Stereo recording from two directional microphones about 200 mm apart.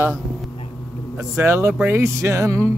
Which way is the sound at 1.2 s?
15° right (ahead or behind).